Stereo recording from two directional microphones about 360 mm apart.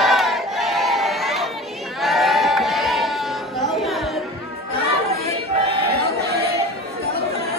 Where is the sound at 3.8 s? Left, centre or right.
Centre.